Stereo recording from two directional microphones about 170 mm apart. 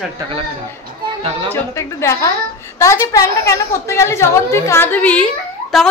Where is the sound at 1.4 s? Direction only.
15° left (ahead or behind).